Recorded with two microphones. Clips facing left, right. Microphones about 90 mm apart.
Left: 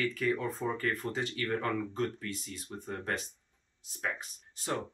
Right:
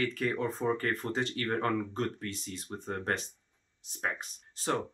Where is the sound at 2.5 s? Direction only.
30° right (ahead or behind).